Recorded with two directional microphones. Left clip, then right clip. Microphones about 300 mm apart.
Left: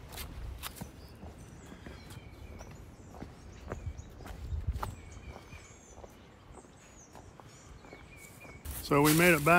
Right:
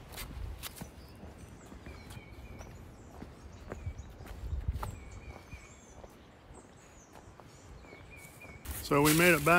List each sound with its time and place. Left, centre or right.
0.1 s a sound: centre
4.3 s walk: centre
8.8 s speech: centre